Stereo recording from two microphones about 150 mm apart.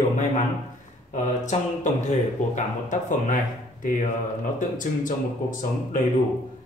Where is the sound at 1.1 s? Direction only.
50° left (ahead or behind).